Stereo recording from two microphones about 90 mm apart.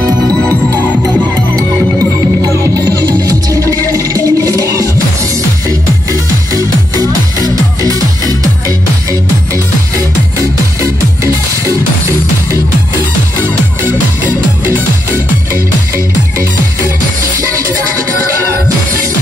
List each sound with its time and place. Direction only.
2.4 s music: 35° right (ahead or behind)
6.5 s music: 45° right (ahead or behind)